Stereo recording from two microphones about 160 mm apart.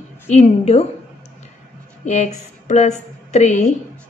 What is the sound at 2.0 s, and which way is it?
A woman's voice, 45° left (ahead or behind).